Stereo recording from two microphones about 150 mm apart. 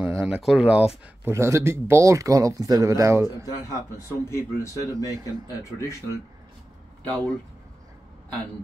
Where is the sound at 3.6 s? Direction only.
20° left (ahead or behind).